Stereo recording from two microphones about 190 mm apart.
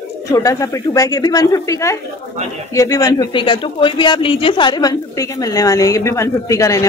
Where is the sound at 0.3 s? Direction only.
15° left (ahead or behind).